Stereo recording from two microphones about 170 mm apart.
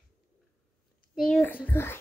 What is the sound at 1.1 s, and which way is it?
Speech, 5° left (ahead or behind).